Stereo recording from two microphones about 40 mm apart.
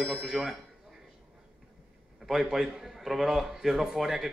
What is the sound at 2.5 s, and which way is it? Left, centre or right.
Speech, centre.